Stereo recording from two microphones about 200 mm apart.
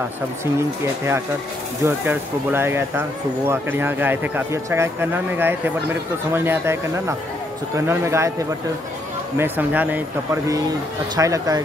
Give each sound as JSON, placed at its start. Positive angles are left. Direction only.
{"t": 0.6, "sound": "speech", "side_deg": -15}
{"t": 9.4, "sound": "speech", "side_deg": -10}